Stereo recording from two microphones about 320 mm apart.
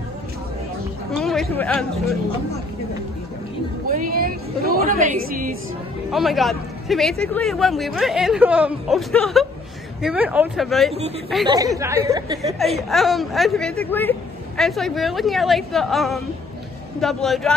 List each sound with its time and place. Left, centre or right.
1.2 s a woman's voice: centre
3.8 s a woman's voice: right
6.1 s a man's voice: centre
11.4 s speech: centre
12.9 s a man's voice: centre